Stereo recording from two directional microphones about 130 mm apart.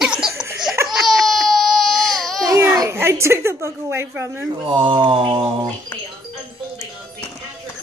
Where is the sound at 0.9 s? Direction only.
Centre (ahead or behind).